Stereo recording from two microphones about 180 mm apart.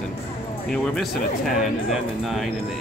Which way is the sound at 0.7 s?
5° left (ahead or behind).